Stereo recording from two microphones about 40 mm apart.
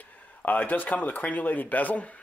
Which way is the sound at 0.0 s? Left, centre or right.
Left.